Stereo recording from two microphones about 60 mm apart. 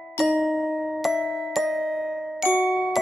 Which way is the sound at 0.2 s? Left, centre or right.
Centre.